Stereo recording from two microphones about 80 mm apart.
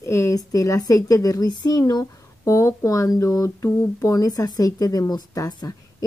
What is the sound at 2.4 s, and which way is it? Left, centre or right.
Speech, left.